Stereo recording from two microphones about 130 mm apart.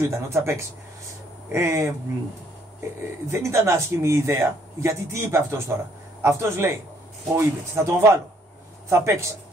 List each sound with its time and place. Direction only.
0.0 s speech: 20° right (ahead or behind)